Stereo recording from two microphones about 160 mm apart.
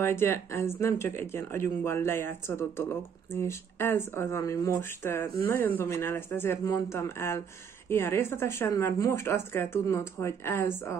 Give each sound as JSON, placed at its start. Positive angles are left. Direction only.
{"t": 0.0, "sound": "speech", "side_deg": 15}